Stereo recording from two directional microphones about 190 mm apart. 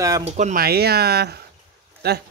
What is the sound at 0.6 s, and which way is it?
Speech, 55° right (ahead or behind).